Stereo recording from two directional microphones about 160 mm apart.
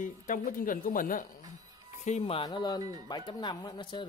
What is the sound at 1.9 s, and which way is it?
Speech, 45° left (ahead or behind).